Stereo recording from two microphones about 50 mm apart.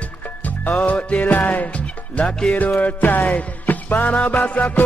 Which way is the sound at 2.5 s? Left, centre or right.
Left.